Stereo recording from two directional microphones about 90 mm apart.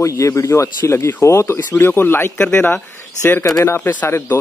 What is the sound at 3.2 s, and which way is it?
A man's voice, 30° left (ahead or behind).